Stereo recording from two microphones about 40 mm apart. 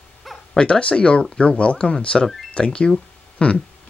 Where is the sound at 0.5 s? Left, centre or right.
Left.